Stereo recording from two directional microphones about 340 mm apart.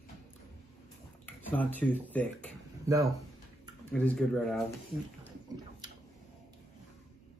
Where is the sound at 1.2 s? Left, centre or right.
Centre.